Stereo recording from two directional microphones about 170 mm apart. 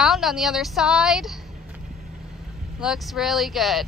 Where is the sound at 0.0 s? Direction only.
Centre (ahead or behind).